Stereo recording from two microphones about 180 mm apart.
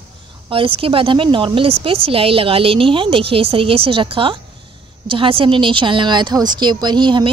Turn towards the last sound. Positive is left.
turn(degrees=-25)  # may be behind; listen again after turning